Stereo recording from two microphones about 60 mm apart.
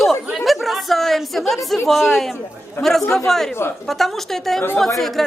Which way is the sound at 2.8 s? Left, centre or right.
Left.